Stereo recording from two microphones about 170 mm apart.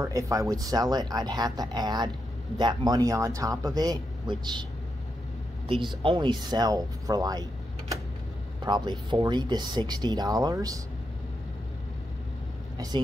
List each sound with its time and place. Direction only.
0.0 s speech: 20° right (ahead or behind)
6.0 s speech: 25° right (ahead or behind)
8.6 s speech: 25° right (ahead or behind)
12.7 s speech: 20° right (ahead or behind)